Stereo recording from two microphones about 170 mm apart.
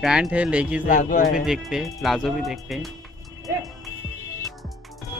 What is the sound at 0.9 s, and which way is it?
Speech, 55° left (ahead or behind).